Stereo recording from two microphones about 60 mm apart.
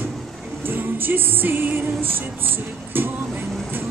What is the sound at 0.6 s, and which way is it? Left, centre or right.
Music, right.